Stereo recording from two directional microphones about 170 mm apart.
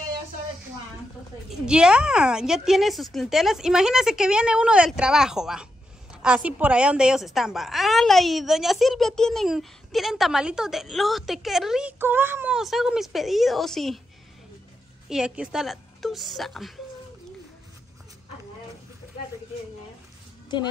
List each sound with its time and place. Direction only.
1.5 s a woman's voice: 5° right (ahead or behind)
15.0 s a woman's voice: 5° right (ahead or behind)
20.4 s speech: 25° left (ahead or behind)